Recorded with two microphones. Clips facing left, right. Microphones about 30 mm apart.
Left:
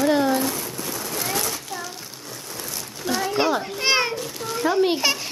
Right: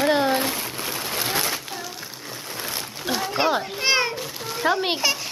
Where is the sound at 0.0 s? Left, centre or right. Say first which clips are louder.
Even; right.